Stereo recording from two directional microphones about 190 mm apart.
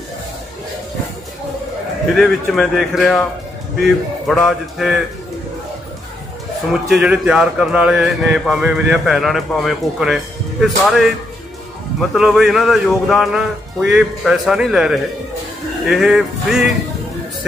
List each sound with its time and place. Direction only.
2.1 s speech: centre (ahead or behind)
6.9 s speech: 5° right (ahead or behind)